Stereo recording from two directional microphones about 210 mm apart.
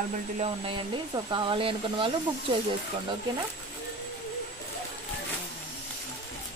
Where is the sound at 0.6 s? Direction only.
20° right (ahead or behind).